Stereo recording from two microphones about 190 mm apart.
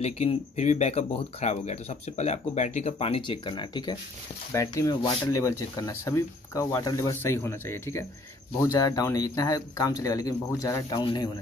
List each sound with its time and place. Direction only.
0.0 s speech: 35° left (ahead or behind)